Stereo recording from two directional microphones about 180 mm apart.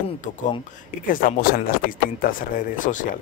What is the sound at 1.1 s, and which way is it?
Speech, 50° left (ahead or behind).